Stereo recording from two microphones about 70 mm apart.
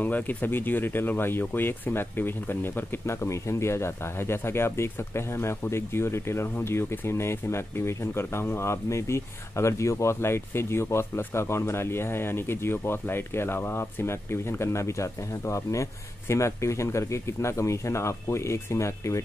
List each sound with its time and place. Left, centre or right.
0.0 s speech: left